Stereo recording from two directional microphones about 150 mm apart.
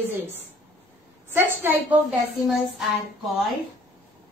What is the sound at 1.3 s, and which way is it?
Speech, 15° right (ahead or behind).